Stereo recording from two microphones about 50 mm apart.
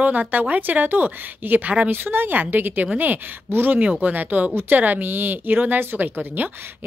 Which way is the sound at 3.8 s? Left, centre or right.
Right.